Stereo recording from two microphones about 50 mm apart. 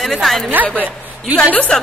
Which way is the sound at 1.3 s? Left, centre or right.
Left.